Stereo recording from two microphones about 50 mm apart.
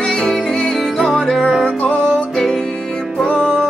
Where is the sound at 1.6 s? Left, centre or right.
Left.